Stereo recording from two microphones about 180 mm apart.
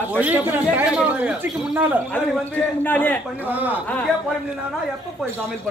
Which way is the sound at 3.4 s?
10° right (ahead or behind).